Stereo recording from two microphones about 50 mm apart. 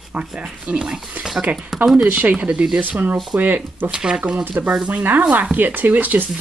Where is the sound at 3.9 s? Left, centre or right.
Centre.